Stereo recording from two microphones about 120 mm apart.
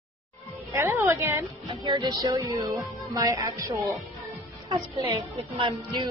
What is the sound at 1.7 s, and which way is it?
Speech, 35° right (ahead or behind).